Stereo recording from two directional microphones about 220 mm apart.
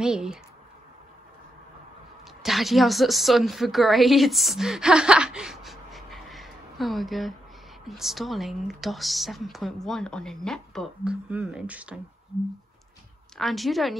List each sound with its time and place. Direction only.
0.0 s speech: 5° right (ahead or behind)
2.4 s a woman's voice: centre (ahead or behind)
13.4 s speech: centre (ahead or behind)